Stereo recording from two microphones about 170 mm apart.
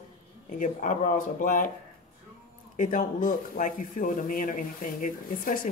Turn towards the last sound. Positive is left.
turn(degrees=50)  # may be behind; listen again after turning